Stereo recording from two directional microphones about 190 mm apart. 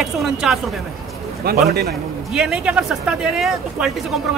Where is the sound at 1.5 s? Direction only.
55° right (ahead or behind).